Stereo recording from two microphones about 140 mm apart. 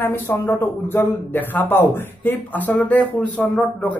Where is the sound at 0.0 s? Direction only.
15° left (ahead or behind).